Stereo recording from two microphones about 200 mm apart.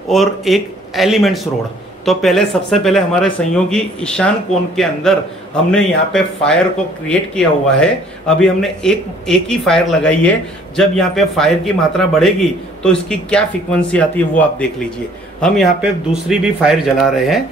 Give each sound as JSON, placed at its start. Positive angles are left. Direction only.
{"t": 0.1, "sound": "a man's voice", "side_deg": 0}
{"t": 15.4, "sound": "a man's voice", "side_deg": 0}